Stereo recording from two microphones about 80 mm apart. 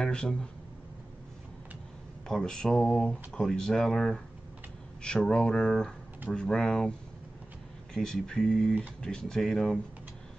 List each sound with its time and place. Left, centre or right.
0.0 s speech: centre
2.2 s speech: centre